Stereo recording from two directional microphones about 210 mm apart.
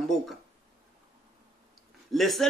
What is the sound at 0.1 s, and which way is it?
Speech, centre (ahead or behind).